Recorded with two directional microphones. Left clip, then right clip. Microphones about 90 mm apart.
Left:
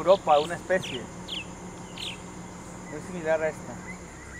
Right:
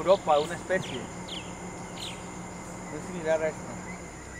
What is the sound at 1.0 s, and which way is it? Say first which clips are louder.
Bird: left 2 dB; 30° right (ahead or behind).